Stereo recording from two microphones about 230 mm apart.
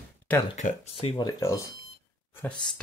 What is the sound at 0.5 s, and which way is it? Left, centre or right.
Speech, left.